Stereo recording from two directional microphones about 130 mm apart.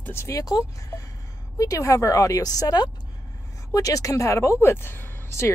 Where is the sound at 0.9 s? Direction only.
20° left (ahead or behind).